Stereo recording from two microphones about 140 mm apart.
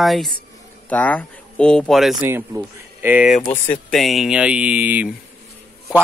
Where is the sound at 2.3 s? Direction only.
15° right (ahead or behind).